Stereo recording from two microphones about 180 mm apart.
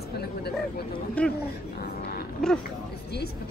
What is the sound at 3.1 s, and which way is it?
Speech, 65° left (ahead or behind).